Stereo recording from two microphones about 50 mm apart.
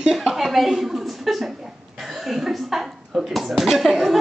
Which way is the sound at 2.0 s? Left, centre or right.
Centre.